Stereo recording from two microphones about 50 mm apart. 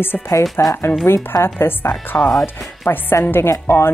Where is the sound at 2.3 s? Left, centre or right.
Centre.